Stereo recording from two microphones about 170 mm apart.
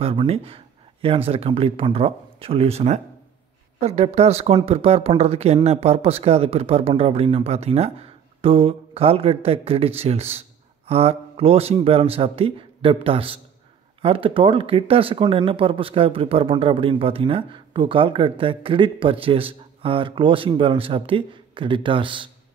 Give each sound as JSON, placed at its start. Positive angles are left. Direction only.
{"t": 0.0, "sound": "speech", "side_deg": -35}